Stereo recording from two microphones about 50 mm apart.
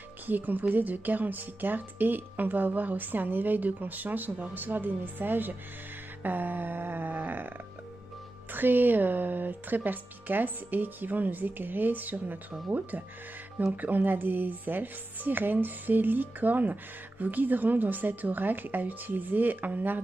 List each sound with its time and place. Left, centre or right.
0.3 s speech: right
8.5 s speech: right
13.7 s speech: right